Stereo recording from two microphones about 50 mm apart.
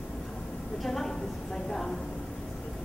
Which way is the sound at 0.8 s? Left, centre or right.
Centre.